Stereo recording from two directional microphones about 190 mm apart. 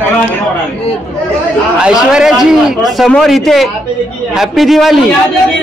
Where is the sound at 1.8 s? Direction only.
5° right (ahead or behind).